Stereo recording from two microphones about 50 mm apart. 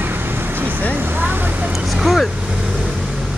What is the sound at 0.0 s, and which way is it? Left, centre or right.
Vehicle, right.